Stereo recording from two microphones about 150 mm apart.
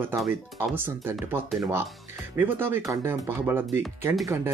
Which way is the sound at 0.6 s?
15° right (ahead or behind).